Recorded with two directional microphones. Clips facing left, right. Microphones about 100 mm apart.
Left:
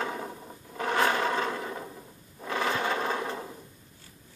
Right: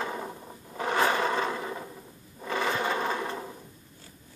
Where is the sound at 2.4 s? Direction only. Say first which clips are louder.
Even; centre (ahead or behind).